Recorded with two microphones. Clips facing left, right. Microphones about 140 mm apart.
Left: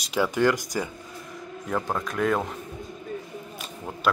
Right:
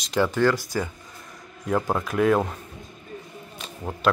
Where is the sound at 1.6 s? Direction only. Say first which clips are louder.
Right 4 dB; 5° right (ahead or behind).